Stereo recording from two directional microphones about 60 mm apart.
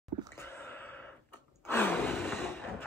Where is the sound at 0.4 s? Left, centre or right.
Left.